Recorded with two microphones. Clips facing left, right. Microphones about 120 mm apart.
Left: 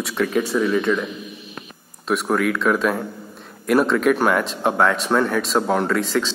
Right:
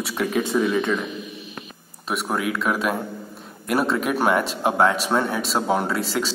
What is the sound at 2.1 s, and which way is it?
A man's voice, 5° right (ahead or behind).